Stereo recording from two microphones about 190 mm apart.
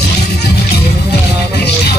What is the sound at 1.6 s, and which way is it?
Music, 60° left (ahead or behind).